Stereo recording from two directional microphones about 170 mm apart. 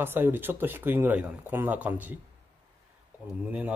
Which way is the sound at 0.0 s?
10° right (ahead or behind).